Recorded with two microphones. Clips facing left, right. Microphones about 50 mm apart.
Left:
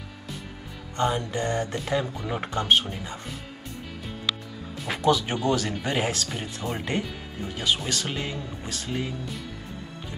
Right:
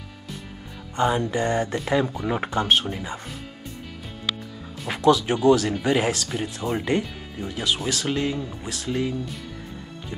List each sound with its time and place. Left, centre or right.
0.9 s speech: centre
1.3 s mantra: right
2.2 s speech: centre
5.0 s speech: centre